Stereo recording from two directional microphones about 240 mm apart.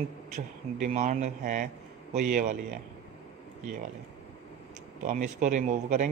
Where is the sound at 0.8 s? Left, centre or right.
Right.